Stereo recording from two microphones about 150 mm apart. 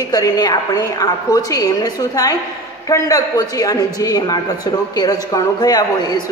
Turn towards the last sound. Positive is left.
turn(degrees=25)  # may be behind; listen again after turning